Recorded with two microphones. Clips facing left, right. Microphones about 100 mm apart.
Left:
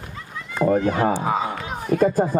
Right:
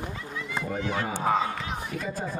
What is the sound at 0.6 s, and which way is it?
Speech, 50° left (ahead or behind).